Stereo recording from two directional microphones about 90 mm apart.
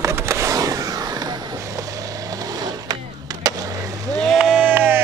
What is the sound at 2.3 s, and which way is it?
Skateboard, 45° right (ahead or behind).